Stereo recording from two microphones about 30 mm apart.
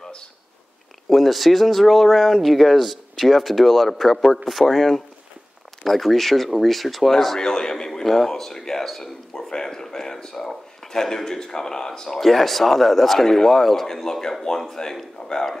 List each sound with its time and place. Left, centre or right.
1.0 s speech: centre
7.3 s speech: left
8.8 s speech: centre
9.3 s a sound: centre
12.1 s a man's voice: centre